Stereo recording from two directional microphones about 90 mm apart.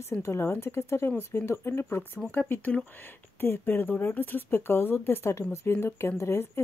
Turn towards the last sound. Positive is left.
turn(degrees=30)  # may be behind; listen again after turning